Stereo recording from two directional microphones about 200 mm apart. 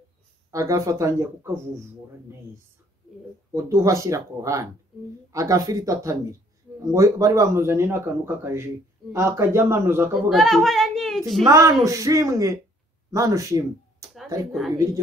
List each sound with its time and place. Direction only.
0.5 s speech: 15° right (ahead or behind)
3.5 s speech: 15° right (ahead or behind)
10.3 s a woman's voice: centre (ahead or behind)
11.4 s speech: 15° right (ahead or behind)